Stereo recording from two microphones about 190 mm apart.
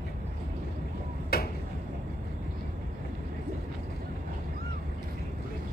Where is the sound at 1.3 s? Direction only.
55° left (ahead or behind).